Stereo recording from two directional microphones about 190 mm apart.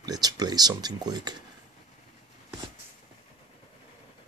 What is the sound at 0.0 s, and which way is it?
Speech, 20° right (ahead or behind).